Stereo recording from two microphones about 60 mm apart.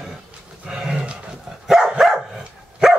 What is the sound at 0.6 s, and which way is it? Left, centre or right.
Dog, centre.